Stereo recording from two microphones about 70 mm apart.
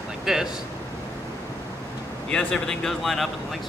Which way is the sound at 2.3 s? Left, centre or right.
Centre.